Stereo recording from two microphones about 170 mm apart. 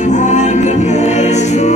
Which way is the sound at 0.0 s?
45° left (ahead or behind).